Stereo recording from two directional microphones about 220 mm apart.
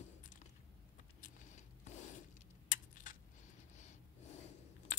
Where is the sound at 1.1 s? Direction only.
35° left (ahead or behind).